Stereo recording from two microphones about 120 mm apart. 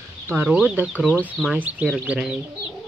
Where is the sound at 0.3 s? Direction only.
20° right (ahead or behind).